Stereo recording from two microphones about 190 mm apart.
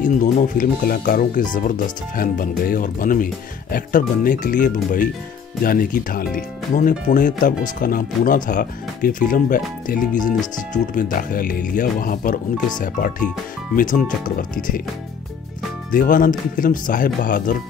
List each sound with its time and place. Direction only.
0.0 s speech: 45° left (ahead or behind)
15.9 s speech: 45° left (ahead or behind)